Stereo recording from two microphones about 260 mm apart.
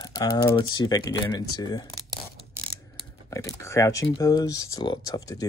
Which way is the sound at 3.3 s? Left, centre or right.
Centre.